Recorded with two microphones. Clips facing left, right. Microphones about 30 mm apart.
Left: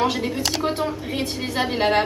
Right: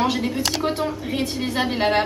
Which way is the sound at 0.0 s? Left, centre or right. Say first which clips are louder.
Even; centre.